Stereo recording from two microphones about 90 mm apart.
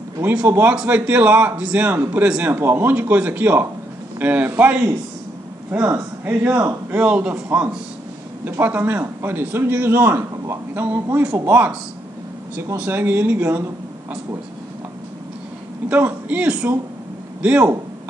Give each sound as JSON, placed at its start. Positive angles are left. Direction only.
{"t": 0.2, "sound": "a man's voice", "side_deg": -20}
{"t": 12.7, "sound": "a man's voice", "side_deg": -20}
{"t": 15.9, "sound": "a man's voice", "side_deg": -20}